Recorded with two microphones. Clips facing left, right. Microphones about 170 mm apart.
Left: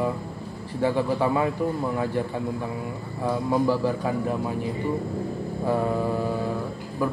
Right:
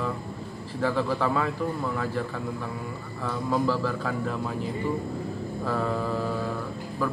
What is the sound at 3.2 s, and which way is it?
A man's voice, 15° left (ahead or behind).